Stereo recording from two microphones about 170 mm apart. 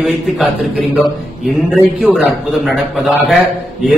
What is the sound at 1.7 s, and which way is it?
A man's voice, 5° right (ahead or behind).